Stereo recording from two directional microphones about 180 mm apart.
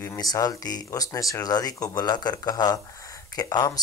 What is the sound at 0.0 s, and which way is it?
Speech, 20° left (ahead or behind).